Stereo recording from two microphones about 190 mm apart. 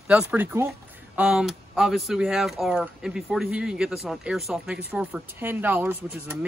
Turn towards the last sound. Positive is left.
turn(degrees=-10)  # may be behind; listen again after turning